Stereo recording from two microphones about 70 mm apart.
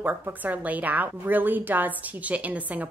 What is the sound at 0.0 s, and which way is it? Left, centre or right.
A woman's voice, right.